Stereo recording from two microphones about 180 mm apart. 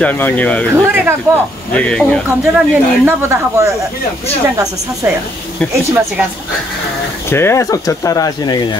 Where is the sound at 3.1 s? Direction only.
15° right (ahead or behind).